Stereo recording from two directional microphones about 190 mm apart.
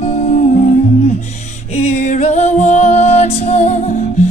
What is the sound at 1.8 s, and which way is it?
Music, 35° left (ahead or behind).